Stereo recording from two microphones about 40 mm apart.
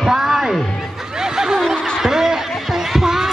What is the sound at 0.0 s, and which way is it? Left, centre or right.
Music, centre.